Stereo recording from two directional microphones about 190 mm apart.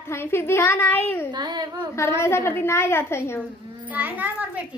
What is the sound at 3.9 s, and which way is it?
Speech, 10° right (ahead or behind).